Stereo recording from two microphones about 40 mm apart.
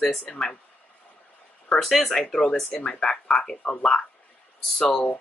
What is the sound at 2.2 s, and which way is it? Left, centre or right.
Speech, centre.